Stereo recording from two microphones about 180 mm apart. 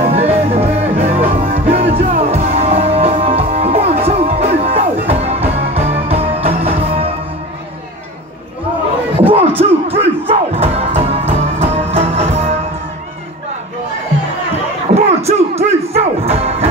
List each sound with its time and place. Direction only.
0.0 s music: 35° right (ahead or behind)
9.6 s music: 35° right (ahead or behind)
15.0 s a sound: 35° right (ahead or behind)
15.9 s music: 35° right (ahead or behind)